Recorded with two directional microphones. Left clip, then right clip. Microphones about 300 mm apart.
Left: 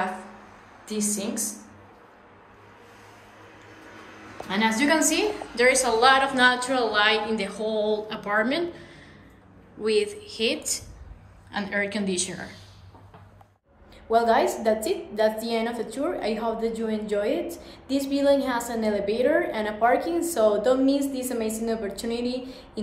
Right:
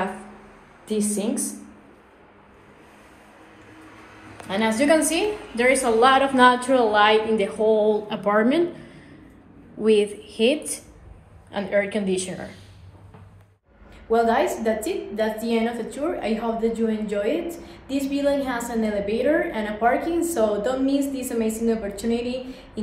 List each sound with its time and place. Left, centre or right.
0.8 s a woman's voice: centre
5.1 s a woman's voice: centre
7.6 s speech: centre
8.1 s a woman's voice: centre
9.8 s a woman's voice: centre
14.1 s a woman's voice: centre